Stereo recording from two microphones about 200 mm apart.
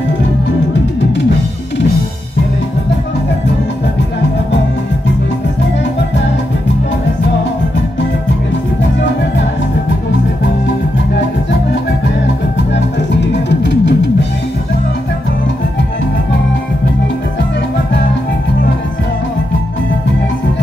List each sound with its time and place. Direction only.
13.5 s music: 65° left (ahead or behind)